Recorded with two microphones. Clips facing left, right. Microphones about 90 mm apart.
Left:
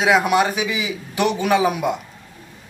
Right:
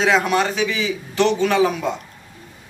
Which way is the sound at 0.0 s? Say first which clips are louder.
Left 1 dB; 10° left (ahead or behind).